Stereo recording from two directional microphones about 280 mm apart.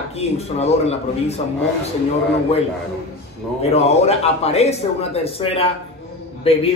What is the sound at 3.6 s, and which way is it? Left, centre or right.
Speech, left.